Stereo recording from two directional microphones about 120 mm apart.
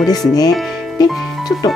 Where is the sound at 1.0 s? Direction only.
35° left (ahead or behind).